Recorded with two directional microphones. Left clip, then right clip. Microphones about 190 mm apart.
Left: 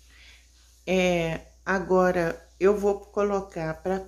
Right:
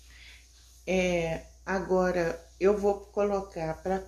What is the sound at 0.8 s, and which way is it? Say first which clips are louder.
Speech: left 4 dB; 15° left (ahead or behind).